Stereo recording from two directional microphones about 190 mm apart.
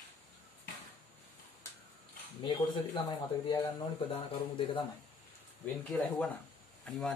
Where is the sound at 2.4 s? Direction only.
25° left (ahead or behind).